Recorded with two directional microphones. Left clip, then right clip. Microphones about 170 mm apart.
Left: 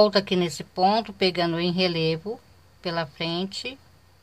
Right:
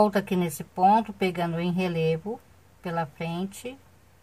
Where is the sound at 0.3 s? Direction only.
20° left (ahead or behind).